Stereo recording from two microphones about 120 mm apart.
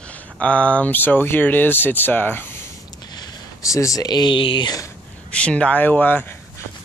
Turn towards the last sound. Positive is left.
turn(degrees=15)  # may be behind; listen again after turning